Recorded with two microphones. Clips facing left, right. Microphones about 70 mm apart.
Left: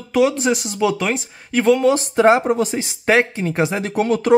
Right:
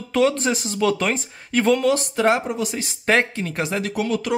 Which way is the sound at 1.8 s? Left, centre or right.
Left.